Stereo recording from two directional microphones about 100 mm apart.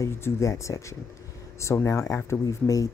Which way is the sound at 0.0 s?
30° left (ahead or behind).